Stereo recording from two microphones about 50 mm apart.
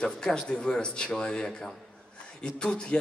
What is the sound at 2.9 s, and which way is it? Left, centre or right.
Speech, centre.